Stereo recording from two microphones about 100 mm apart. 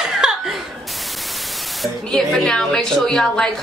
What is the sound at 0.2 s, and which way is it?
Speech, 5° right (ahead or behind).